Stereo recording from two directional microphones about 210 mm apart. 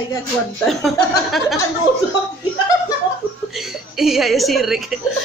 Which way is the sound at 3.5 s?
Centre (ahead or behind).